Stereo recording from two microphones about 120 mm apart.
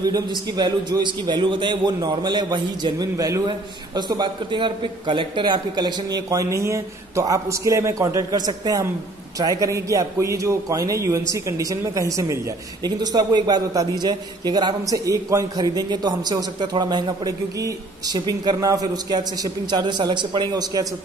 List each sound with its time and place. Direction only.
0.0 s a man's voice: 35° right (ahead or behind)